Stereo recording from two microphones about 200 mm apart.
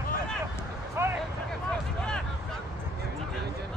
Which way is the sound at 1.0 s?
10° right (ahead or behind).